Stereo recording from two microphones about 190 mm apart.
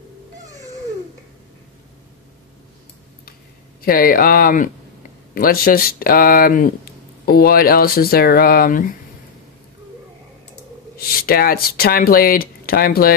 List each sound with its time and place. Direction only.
3.8 s speech: 50° left (ahead or behind)
11.0 s speech: 50° left (ahead or behind)